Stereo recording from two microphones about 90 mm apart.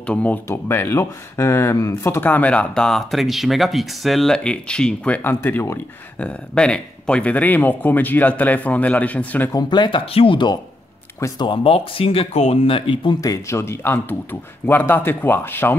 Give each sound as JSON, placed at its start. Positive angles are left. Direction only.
{"t": 0.0, "sound": "speech", "side_deg": 15}
{"t": 0.5, "sound": "a man's voice", "side_deg": 25}
{"t": 2.2, "sound": "speech", "side_deg": 15}
{"t": 6.1, "sound": "speech", "side_deg": 10}
{"t": 9.7, "sound": "speech", "side_deg": 65}
{"t": 13.2, "sound": "a man's voice", "side_deg": 35}